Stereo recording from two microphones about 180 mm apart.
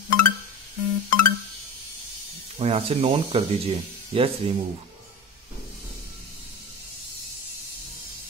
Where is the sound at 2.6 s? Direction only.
35° right (ahead or behind).